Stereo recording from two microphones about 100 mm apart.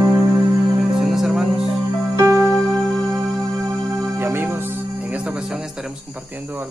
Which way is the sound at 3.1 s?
35° right (ahead or behind).